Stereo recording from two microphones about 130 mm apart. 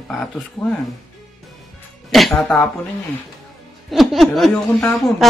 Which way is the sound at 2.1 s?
Centre (ahead or behind).